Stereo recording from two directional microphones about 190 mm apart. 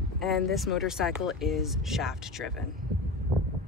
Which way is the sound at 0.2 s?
Centre (ahead or behind).